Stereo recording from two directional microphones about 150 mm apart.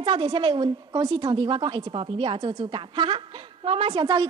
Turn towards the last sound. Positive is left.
turn(degrees=-30)  # may be behind; listen again after turning